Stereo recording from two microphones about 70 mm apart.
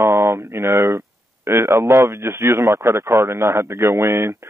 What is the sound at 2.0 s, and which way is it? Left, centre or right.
Speech, right.